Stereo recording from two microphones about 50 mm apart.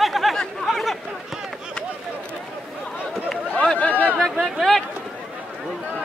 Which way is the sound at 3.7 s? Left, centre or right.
Left.